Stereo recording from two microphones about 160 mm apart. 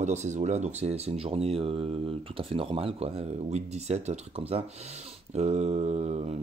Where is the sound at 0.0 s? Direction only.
45° right (ahead or behind).